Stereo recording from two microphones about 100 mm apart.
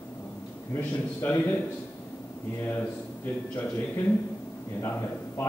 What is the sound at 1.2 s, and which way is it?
Speech, 20° left (ahead or behind).